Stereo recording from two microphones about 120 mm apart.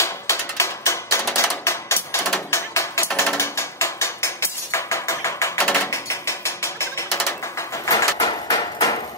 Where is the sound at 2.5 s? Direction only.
25° left (ahead or behind).